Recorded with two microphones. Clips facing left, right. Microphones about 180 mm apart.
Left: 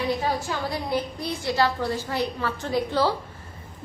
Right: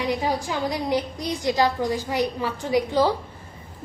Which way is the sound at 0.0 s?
15° right (ahead or behind).